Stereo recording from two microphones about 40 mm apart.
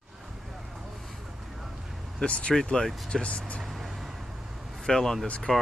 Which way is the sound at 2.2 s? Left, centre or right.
Left.